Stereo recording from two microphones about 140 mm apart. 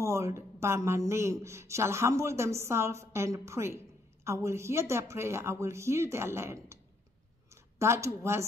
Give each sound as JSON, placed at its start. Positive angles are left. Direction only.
{"t": 0.0, "sound": "speech", "side_deg": -20}
{"t": 7.8, "sound": "speech", "side_deg": -20}